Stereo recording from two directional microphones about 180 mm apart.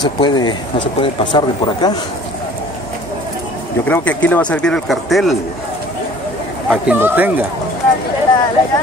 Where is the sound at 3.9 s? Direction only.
10° left (ahead or behind).